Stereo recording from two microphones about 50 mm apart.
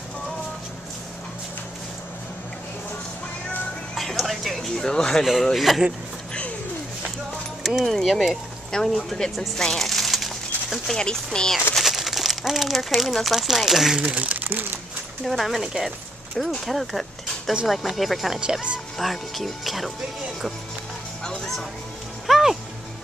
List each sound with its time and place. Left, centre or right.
3.9 s speech: centre
5.2 s speech: centre
7.6 s speech: centre
11.3 s speech: centre
11.8 s speech: centre
13.9 s speech: right
15.2 s speech: centre
18.4 s speech: right
18.9 s speech: centre
21.2 s music: centre
22.2 s music: centre